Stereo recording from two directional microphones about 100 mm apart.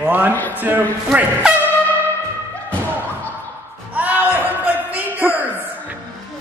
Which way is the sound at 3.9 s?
15° right (ahead or behind).